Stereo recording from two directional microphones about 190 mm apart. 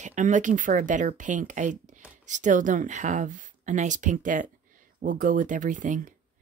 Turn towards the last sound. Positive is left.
turn(degrees=-40)  # may be behind; listen again after turning